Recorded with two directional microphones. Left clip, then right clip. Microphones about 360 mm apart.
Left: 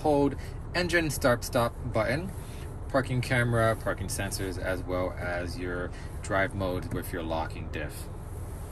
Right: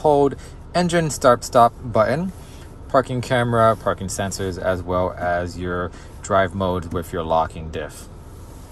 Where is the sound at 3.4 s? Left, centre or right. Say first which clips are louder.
Right 10 dB; right.